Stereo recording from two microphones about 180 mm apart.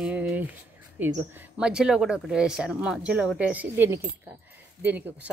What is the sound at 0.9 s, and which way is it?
Speech, 10° right (ahead or behind).